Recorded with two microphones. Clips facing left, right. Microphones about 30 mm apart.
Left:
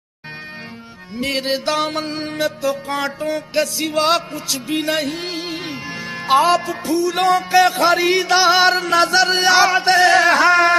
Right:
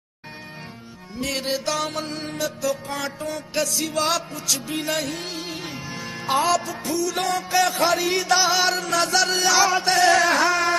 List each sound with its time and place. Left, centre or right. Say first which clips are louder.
1.2 s music: left 5 dB; left